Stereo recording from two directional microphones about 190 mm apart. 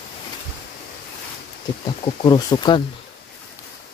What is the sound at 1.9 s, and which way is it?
Speech, 25° left (ahead or behind).